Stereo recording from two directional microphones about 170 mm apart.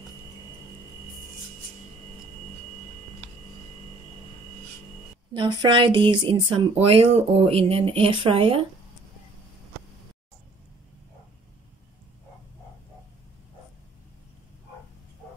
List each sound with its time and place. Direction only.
5.3 s speech: 30° right (ahead or behind)